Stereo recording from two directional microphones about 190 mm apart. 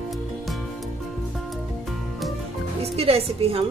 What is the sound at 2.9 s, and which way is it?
Music, 30° right (ahead or behind).